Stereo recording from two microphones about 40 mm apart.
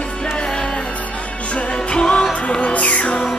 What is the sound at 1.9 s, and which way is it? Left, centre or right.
Music, left.